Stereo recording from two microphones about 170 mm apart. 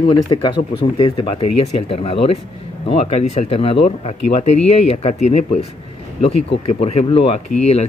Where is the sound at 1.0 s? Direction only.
30° left (ahead or behind).